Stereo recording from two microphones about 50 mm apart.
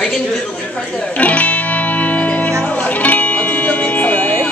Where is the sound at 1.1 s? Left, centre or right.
Left.